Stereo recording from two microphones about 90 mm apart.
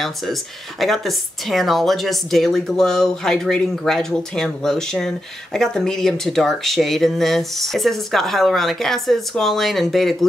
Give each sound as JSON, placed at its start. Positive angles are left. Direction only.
{"t": 0.0, "sound": "speech", "side_deg": 0}